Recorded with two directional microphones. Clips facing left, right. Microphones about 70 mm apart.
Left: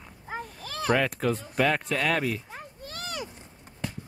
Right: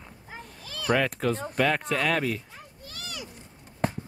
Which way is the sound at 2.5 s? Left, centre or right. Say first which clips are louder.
Left 5 dB; left.